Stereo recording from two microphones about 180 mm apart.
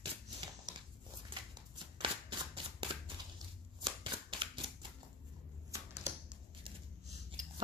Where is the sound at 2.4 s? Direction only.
25° right (ahead or behind).